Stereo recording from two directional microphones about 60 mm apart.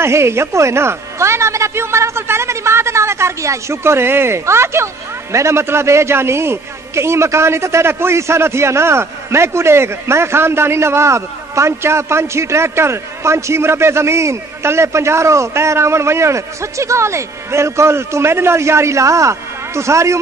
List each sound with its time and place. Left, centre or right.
0.0 s a man's voice: right